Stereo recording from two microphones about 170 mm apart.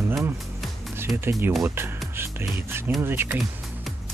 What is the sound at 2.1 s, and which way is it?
Music, 15° right (ahead or behind).